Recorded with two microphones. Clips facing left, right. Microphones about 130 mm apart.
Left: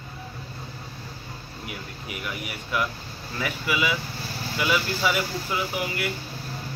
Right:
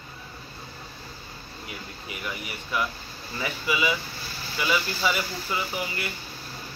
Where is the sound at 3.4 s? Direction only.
5° left (ahead or behind).